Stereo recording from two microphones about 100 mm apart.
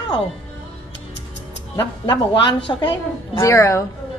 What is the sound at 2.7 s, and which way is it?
Speech, 45° left (ahead or behind).